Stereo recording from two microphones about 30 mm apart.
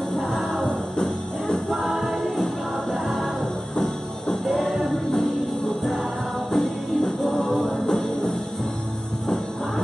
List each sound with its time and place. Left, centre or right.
0.3 s music: centre
0.9 s music: left
1.7 s music: centre
4.5 s music: centre
6.5 s music: centre
7.8 s music: centre